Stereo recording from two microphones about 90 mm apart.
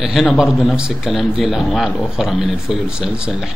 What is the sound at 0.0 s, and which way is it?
A man's voice, 5° right (ahead or behind).